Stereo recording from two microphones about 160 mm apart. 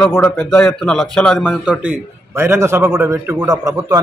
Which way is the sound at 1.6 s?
10° right (ahead or behind).